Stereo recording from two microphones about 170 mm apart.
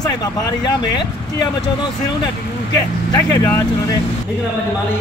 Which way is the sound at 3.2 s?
15° left (ahead or behind).